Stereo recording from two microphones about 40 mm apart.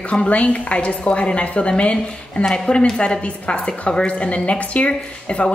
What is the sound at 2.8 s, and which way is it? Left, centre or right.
A woman's voice, centre.